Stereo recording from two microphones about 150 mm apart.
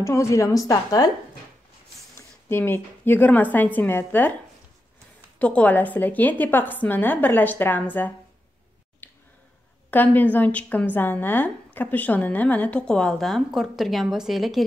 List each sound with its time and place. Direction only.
0.0 s a woman's voice: 20° left (ahead or behind)
2.1 s a woman's voice: 15° left (ahead or behind)
5.4 s a woman's voice: 10° left (ahead or behind)
9.0 s a sound: 15° left (ahead or behind)
9.8 s a woman's voice: 10° left (ahead or behind)